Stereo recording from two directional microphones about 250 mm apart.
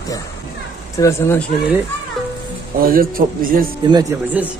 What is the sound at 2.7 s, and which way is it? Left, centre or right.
A man's voice, right.